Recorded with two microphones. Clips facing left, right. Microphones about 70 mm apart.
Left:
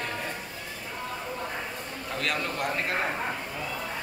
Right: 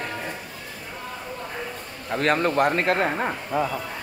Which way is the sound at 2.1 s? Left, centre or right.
Right.